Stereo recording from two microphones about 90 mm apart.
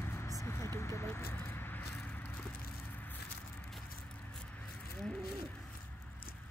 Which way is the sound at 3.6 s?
10° left (ahead or behind).